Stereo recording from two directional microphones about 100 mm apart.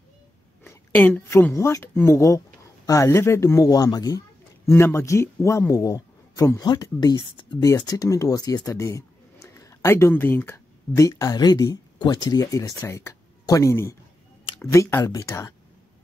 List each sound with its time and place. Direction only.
0.7 s a woman's voice: 20° left (ahead or behind); by 4.2 s 40° left (ahead or behind)
4.6 s a man's voice: 25° left (ahead or behind); by 7.4 s 45° left (ahead or behind)
7.6 s a man's voice: 35° left (ahead or behind)